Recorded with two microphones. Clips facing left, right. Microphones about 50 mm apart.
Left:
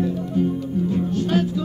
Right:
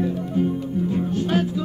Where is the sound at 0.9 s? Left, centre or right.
Centre.